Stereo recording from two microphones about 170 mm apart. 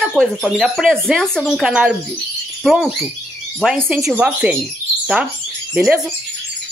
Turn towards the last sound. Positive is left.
turn(degrees=-5)  # may be behind; listen again after turning